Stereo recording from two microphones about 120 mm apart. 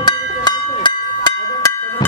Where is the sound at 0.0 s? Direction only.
35° left (ahead or behind).